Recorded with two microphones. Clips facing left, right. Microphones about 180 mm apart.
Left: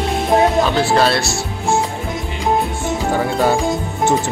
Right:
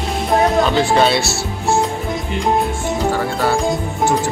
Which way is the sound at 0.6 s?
5° left (ahead or behind).